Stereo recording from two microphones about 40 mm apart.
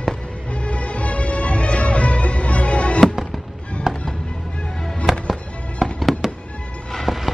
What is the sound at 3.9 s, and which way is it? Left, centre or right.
Music, centre.